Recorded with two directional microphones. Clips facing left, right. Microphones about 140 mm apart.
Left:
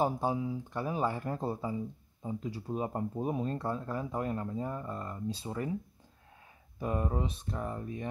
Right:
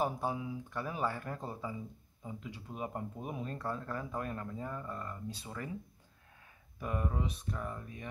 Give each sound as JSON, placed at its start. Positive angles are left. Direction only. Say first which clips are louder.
{"t": 0.0, "sound": "speech", "louder": "left 4 dB", "side_deg": 25}
{"t": 6.8, "sound": "speech", "louder": "left 4 dB", "side_deg": 30}